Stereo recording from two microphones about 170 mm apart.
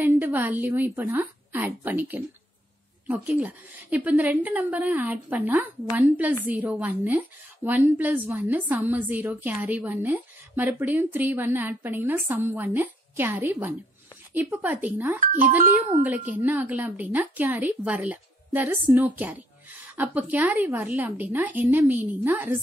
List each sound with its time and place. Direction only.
0.0 s a woman's voice: 10° right (ahead or behind)
15.3 s a child's voice: 50° right (ahead or behind)
16.0 s a woman's voice: 10° right (ahead or behind)